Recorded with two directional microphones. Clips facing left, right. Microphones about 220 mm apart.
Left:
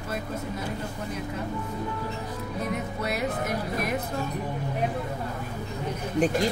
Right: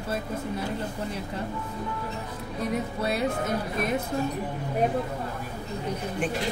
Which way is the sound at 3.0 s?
30° right (ahead or behind).